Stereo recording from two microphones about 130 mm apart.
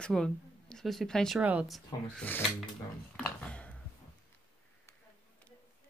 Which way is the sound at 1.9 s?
35° left (ahead or behind).